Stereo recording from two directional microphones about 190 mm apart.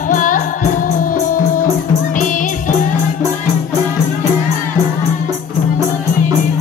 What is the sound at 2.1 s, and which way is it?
Music, 45° left (ahead or behind).